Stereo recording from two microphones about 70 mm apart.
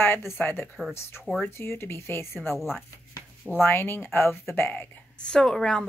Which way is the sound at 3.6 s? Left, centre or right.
Left.